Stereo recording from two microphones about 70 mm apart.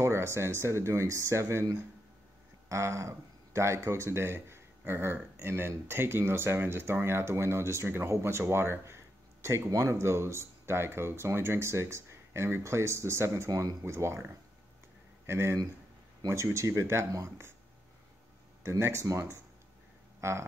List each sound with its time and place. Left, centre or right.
0.0 s speech: right
2.7 s speech: right
13.5 s speech: right
13.8 s speech: right
18.6 s speech: right